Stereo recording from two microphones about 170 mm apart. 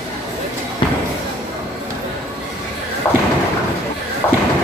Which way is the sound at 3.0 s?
15° left (ahead or behind).